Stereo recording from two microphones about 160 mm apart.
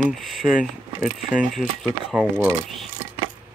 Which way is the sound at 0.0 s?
Centre (ahead or behind).